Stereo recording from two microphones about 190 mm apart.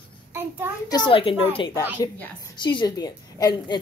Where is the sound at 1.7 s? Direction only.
15° left (ahead or behind).